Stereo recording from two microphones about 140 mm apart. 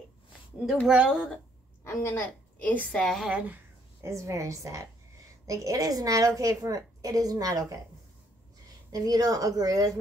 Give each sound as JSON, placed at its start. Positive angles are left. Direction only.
{"t": 0.8, "sound": "speech", "side_deg": -5}
{"t": 1.9, "sound": "a woman's voice", "side_deg": 20}
{"t": 4.0, "sound": "a woman's voice", "side_deg": -20}
{"t": 8.9, "sound": "a woman's voice", "side_deg": -25}